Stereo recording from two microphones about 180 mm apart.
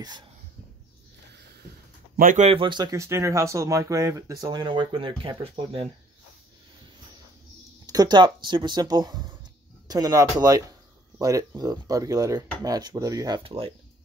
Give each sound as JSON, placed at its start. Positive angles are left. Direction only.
{"t": 2.1, "sound": "speech", "side_deg": -45}
{"t": 7.8, "sound": "speech", "side_deg": -20}